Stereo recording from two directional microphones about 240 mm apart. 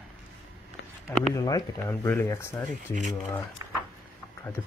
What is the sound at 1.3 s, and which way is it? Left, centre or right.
Speech, centre.